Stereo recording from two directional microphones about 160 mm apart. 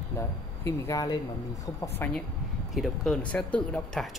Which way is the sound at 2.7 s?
Centre (ahead or behind).